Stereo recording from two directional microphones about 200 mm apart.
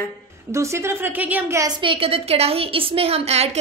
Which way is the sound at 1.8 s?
30° right (ahead or behind).